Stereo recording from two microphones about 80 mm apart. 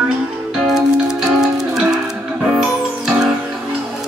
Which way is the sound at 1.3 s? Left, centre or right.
Centre.